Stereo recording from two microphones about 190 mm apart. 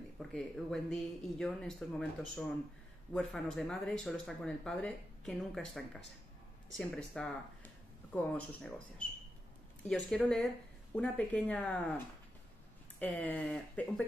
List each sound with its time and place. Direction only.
0.2 s speech: centre (ahead or behind)
13.0 s speech: 10° left (ahead or behind)